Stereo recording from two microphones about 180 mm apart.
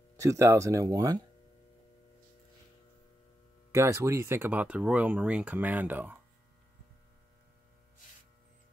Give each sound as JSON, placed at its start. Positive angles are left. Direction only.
{"t": 0.2, "sound": "speech", "side_deg": -15}
{"t": 3.7, "sound": "speech", "side_deg": -15}